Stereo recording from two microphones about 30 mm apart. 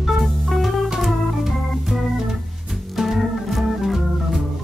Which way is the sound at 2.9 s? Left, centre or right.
Centre.